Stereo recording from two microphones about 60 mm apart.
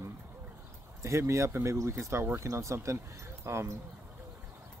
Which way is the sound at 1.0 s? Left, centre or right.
Right.